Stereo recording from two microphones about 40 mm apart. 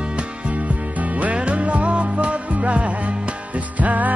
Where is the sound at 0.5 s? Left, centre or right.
Right.